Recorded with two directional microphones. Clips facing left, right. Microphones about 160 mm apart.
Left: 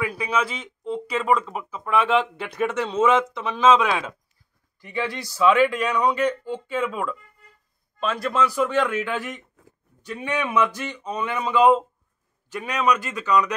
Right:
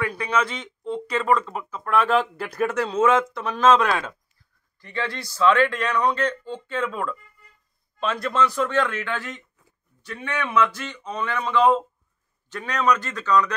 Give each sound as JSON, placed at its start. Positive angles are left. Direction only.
{"t": 0.0, "sound": "speech", "side_deg": 5}